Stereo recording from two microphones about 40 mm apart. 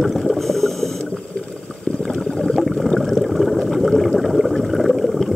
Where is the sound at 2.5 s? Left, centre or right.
Centre.